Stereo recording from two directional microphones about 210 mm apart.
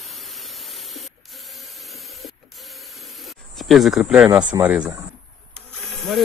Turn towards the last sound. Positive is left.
turn(degrees=0)  # may be behind; listen again after turning